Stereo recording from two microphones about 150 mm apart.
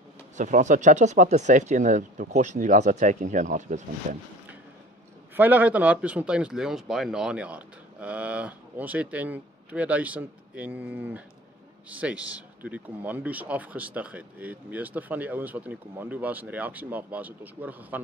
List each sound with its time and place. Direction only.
0.4 s speech: 55° right (ahead or behind)
5.3 s speech: 10° right (ahead or behind)